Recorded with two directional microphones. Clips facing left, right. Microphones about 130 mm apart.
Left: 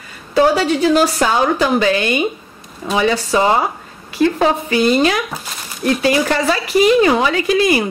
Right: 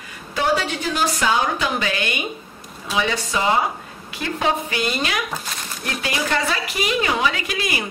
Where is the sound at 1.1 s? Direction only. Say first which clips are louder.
Left 6 dB; 40° left (ahead or behind).